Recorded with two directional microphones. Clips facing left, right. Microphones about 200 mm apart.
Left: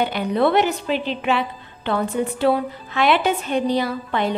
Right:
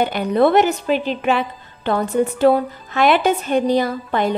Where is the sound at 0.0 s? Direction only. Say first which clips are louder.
Right 3 dB; 45° right (ahead or behind).